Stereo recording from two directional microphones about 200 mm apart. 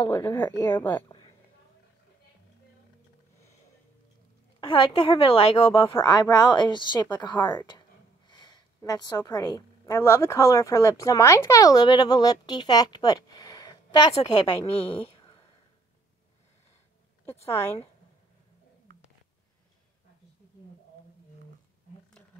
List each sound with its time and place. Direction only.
0.1 s a woman's voice: 15° left (ahead or behind)
4.6 s a woman's voice: 25° left (ahead or behind)
14.1 s a woman's voice: 30° left (ahead or behind)
17.5 s a woman's voice: 10° left (ahead or behind)